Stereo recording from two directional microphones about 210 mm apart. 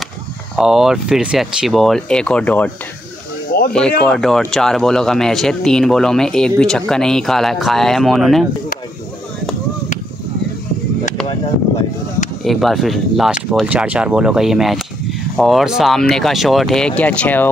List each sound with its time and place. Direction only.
0.6 s speech: centre (ahead or behind)
3.5 s a sound: 45° left (ahead or behind)
4.0 s speech: 5° left (ahead or behind)
12.4 s speech: centre (ahead or behind)